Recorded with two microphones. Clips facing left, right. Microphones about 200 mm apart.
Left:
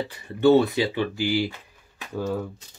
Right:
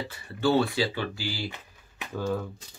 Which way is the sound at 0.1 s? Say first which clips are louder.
Left 7 dB; 20° left (ahead or behind).